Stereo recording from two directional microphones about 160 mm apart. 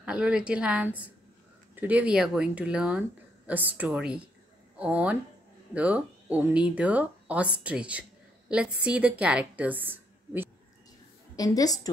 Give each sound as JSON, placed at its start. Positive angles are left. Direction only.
{"t": 0.0, "sound": "a woman's voice", "side_deg": -5}
{"t": 11.3, "sound": "a woman's voice", "side_deg": 25}